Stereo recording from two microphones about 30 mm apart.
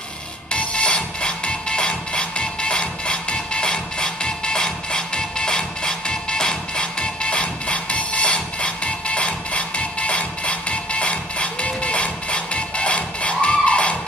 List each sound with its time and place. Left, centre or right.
0.5 s music: left